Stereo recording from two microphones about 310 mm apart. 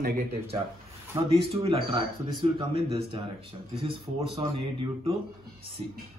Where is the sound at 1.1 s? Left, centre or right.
Centre.